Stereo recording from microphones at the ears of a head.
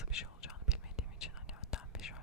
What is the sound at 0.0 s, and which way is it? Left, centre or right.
Whispering, left.